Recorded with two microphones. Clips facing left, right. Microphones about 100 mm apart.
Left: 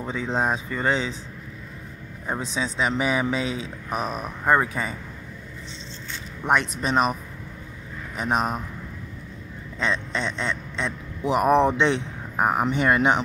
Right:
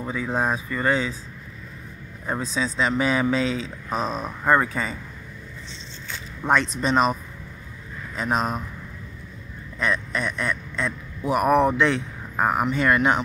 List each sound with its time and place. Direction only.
0.1 s speech: 25° left (ahead or behind)
2.2 s speech: 15° left (ahead or behind)
6.4 s speech: 15° left (ahead or behind)
8.2 s speech: 15° left (ahead or behind)
9.8 s a man's voice: 25° left (ahead or behind)